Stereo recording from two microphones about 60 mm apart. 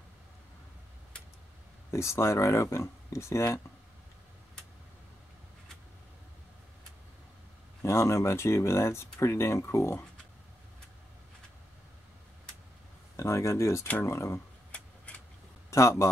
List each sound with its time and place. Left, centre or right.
1.9 s speech: left
7.8 s speech: left
13.1 s speech: left
14.7 s vehicle: left
15.7 s speech: left